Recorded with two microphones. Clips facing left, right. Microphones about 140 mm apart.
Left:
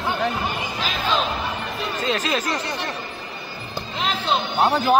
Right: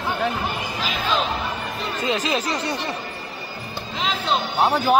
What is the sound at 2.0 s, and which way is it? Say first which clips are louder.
Speech: right 1 dB; 15° right (ahead or behind).